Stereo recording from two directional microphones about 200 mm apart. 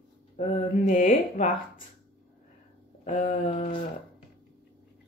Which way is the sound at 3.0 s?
40° left (ahead or behind).